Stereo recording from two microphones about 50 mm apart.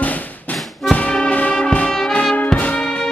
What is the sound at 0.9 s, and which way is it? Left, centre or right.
Music, left.